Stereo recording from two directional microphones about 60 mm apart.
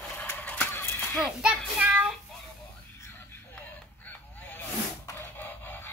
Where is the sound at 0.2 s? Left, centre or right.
Left.